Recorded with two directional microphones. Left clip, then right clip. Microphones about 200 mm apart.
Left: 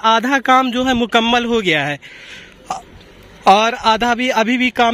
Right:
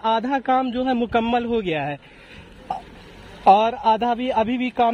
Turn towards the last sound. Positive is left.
turn(degrees=10)  # may be behind; listen again after turning